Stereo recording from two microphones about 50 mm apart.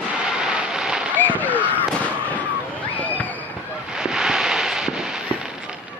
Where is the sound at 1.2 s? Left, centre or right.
Left.